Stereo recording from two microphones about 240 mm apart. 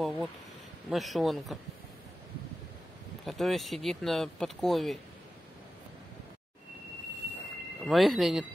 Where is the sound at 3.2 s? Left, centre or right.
Centre.